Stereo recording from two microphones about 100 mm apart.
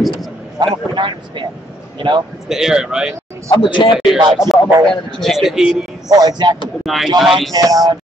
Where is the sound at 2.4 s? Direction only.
5° right (ahead or behind).